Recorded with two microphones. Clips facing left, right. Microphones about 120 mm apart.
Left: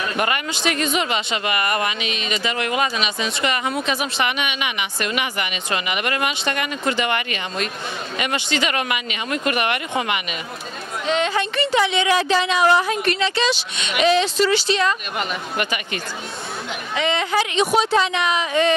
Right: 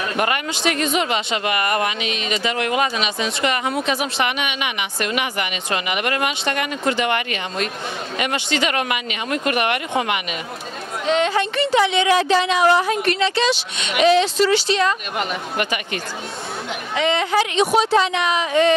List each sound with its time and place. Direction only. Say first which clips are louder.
0.1 s a woman's voice: right 1 dB; 50° right (ahead or behind)
12.7 s a woman's voice: right 1 dB; 45° right (ahead or behind)